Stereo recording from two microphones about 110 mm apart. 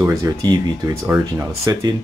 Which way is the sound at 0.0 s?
30° right (ahead or behind).